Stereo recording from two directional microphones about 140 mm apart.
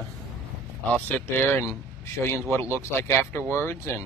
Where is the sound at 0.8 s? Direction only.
10° left (ahead or behind).